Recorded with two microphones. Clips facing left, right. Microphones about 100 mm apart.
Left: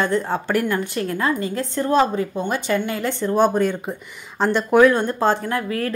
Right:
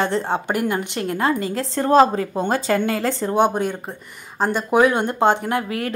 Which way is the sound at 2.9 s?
90° right.